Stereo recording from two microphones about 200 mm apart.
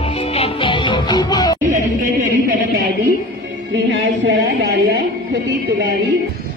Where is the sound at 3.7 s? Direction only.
65° right (ahead or behind).